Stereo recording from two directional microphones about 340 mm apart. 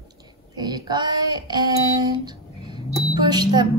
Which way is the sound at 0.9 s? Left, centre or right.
Centre.